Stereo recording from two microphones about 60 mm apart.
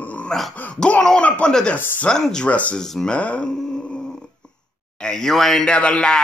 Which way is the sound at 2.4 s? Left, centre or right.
Left.